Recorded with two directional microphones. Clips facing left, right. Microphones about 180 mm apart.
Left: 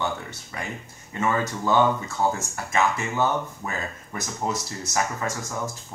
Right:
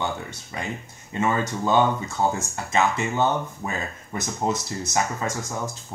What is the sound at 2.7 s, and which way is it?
Speech, 20° right (ahead or behind).